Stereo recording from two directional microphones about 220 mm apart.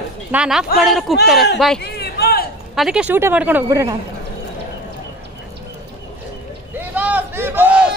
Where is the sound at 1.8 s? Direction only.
45° left (ahead or behind).